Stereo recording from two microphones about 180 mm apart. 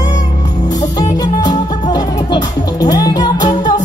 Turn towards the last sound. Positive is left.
turn(degrees=20)  # may be behind; listen again after turning